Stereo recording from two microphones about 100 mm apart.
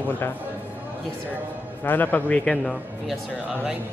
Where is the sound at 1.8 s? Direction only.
20° left (ahead or behind).